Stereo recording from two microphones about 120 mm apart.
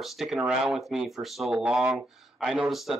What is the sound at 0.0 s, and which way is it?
Speech, centre (ahead or behind).